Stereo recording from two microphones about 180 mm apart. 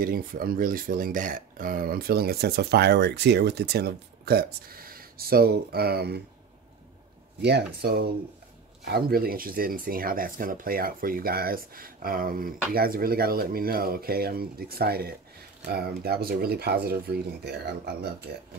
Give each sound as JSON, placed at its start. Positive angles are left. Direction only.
{"t": 0.0, "sound": "speech", "side_deg": -50}
{"t": 7.4, "sound": "speech", "side_deg": -65}